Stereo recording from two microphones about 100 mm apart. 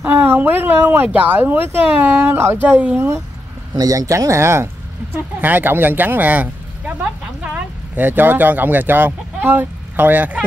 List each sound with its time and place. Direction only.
0.0 s speech: 20° right (ahead or behind)
3.7 s speech: 40° right (ahead or behind); by 10.4 s 15° right (ahead or behind)